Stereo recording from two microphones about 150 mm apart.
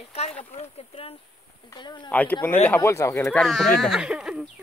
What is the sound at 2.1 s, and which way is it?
Speech, 10° left (ahead or behind).